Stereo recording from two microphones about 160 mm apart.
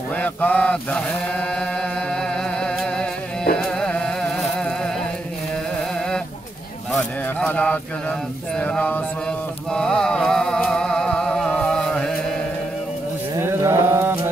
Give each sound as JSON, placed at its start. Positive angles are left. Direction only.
{"t": 0.1, "sound": "chant", "side_deg": 10}
{"t": 3.5, "sound": "music", "side_deg": 5}
{"t": 6.9, "sound": "a sound", "side_deg": 5}
{"t": 8.5, "sound": "mantra", "side_deg": 5}
{"t": 13.4, "sound": "mantra", "side_deg": -15}